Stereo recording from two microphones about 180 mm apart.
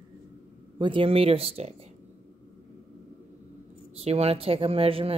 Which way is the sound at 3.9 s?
35° right (ahead or behind).